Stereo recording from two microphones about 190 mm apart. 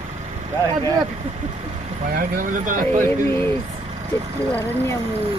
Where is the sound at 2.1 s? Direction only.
45° right (ahead or behind).